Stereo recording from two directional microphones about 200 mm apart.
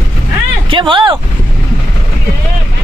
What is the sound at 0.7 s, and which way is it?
Speech, 25° right (ahead or behind).